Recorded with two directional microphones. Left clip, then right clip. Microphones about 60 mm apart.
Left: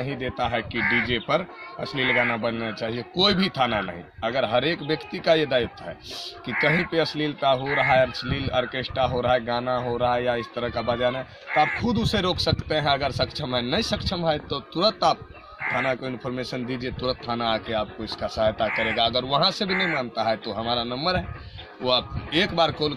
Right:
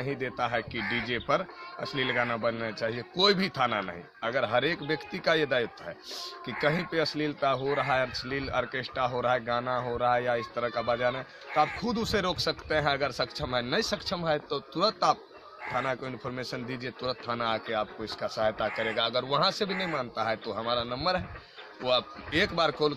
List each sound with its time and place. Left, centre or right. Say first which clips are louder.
0.0 s speech: left 4 dB; right
2.2 s a man's voice: left 4 dB; right